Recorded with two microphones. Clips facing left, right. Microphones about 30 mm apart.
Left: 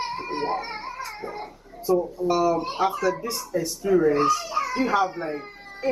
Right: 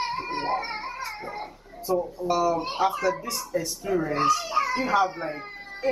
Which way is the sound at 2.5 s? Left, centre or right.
Centre.